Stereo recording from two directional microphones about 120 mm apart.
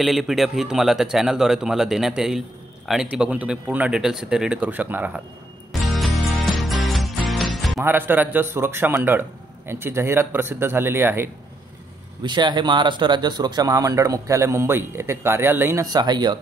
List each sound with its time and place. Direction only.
0.0 s speech: centre (ahead or behind)
5.7 s music: centre (ahead or behind)
7.8 s speech: 15° right (ahead or behind)
12.2 s speech: 40° right (ahead or behind); by 15.8 s 20° right (ahead or behind)
15.8 s speech: 35° right (ahead or behind)